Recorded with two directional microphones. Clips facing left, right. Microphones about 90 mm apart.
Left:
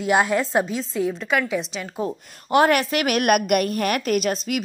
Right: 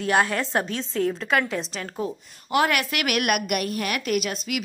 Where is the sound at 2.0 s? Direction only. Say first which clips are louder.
Left 3 dB; 35° left (ahead or behind).